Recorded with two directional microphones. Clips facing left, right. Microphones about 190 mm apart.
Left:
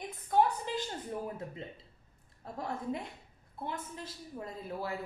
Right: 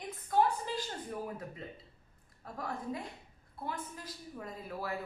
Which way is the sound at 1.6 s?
25° left (ahead or behind).